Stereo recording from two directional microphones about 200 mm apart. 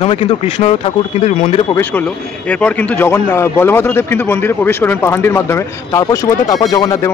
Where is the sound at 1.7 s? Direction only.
10° left (ahead or behind).